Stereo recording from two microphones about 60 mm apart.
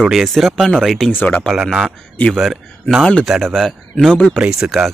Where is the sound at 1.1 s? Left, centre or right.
Left.